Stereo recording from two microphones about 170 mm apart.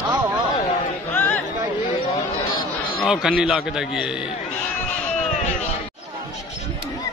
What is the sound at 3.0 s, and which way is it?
A man's voice, centre (ahead or behind).